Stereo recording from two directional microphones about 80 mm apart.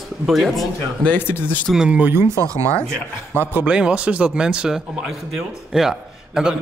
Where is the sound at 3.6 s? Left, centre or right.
Centre.